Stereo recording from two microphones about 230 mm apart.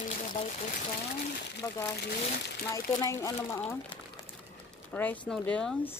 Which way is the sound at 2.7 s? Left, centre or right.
Centre.